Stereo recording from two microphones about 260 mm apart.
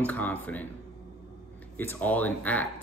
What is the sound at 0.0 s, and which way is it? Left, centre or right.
Speech, centre.